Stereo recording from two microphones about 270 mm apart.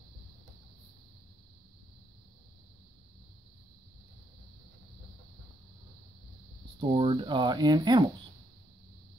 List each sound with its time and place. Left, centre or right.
6.8 s speech: centre